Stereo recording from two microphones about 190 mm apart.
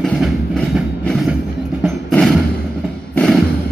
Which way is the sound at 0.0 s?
5° left (ahead or behind).